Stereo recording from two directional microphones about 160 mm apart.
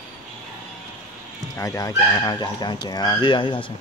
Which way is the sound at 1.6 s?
20° left (ahead or behind).